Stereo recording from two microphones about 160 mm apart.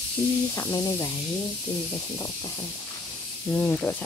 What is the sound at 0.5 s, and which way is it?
Speech, 25° left (ahead or behind).